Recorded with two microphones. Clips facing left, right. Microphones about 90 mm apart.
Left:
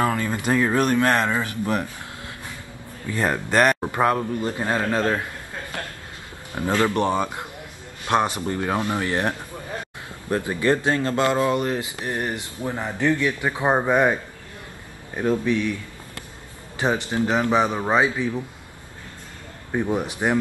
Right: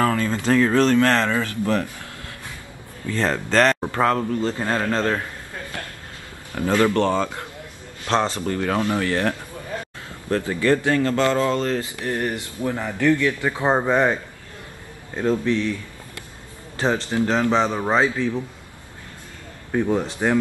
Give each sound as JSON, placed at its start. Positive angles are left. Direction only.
{"t": 0.0, "sound": "speech", "side_deg": 15}
{"t": 3.1, "sound": "speech", "side_deg": 15}
{"t": 6.5, "sound": "speech", "side_deg": 20}
{"t": 15.1, "sound": "speech", "side_deg": 15}
{"t": 16.7, "sound": "speech", "side_deg": 15}
{"t": 19.7, "sound": "speech", "side_deg": 15}